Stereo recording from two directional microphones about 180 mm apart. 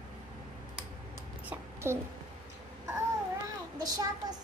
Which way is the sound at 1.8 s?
15° right (ahead or behind).